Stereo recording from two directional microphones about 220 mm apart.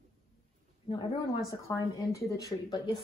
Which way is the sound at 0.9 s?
20° left (ahead or behind).